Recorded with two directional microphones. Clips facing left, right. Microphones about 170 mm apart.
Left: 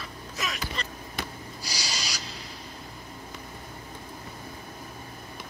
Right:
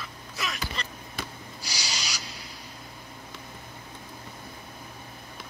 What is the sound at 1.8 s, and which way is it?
Rub, 10° right (ahead or behind).